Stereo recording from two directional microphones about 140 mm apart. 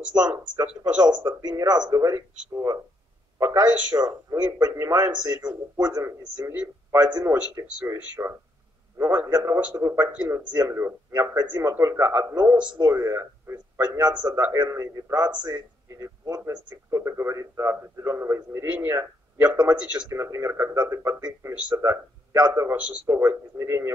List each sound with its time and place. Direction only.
1.0 s a man's voice: 30° right (ahead or behind); by 20.0 s 10° right (ahead or behind)
20.1 s a man's voice: 20° right (ahead or behind)